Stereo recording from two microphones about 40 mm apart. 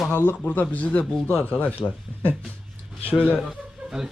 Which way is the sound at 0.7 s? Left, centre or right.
Left.